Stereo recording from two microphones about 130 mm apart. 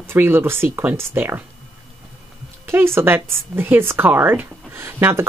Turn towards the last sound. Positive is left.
turn(degrees=-20)  # may be behind; listen again after turning